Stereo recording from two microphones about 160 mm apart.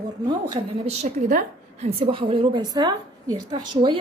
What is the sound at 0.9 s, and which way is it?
A woman's voice, 45° right (ahead or behind).